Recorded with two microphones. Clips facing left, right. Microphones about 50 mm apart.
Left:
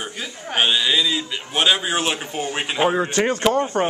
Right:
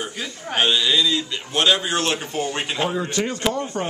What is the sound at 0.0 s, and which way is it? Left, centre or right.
A man's voice, centre.